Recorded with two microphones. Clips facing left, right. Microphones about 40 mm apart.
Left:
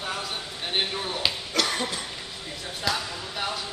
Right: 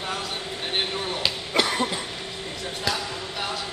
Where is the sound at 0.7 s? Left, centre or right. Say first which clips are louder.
Even; centre.